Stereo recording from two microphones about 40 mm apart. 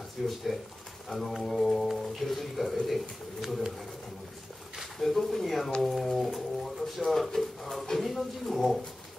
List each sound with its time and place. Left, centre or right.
0.2 s speech: centre
4.9 s speech: centre